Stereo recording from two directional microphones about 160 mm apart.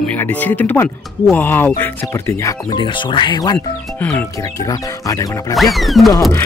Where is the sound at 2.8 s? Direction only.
30° left (ahead or behind).